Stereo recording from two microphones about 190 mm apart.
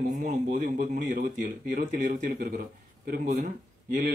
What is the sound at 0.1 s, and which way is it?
Speech, 45° right (ahead or behind).